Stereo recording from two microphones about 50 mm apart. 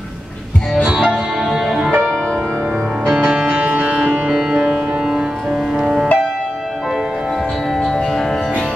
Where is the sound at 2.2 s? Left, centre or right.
Centre.